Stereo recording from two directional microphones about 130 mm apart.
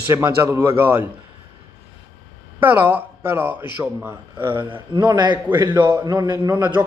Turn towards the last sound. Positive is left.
turn(degrees=-35)  # may be behind; listen again after turning